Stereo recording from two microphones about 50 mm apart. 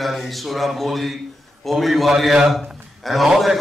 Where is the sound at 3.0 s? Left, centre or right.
Centre.